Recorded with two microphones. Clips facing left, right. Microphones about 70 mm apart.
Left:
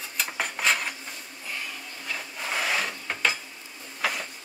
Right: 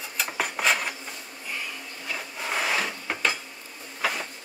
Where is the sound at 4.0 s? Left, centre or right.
Centre.